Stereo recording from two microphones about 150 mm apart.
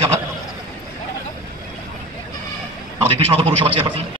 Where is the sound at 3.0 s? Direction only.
40° right (ahead or behind).